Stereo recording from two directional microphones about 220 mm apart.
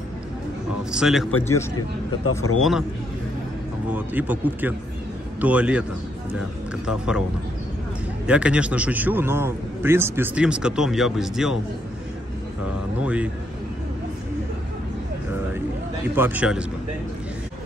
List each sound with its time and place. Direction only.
0.9 s a man's voice: centre (ahead or behind)
1.8 s speech: 85° left
3.9 s a man's voice: 10° right (ahead or behind)
6.9 s a man's voice: 5° right (ahead or behind)
8.3 s a man's voice: 5° right (ahead or behind)
13.0 s a man's voice: 5° right (ahead or behind)
16.2 s a man's voice: 5° right (ahead or behind)